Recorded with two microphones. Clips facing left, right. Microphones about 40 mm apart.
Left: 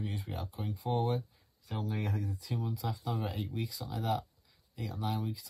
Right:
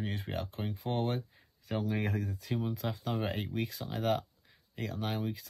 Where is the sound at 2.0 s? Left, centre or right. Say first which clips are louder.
Right 2 dB; right.